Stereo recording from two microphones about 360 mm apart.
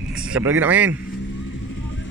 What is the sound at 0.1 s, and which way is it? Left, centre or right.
Speech, centre.